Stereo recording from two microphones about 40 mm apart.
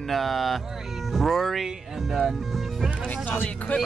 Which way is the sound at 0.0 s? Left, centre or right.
Centre.